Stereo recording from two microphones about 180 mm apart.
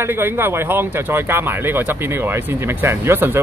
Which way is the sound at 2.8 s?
15° right (ahead or behind).